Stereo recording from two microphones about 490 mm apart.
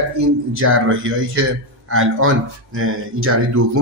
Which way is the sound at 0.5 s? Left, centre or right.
Right.